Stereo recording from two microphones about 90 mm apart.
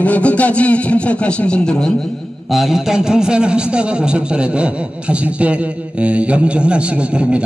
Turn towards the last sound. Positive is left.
turn(degrees=-10)  # may be behind; listen again after turning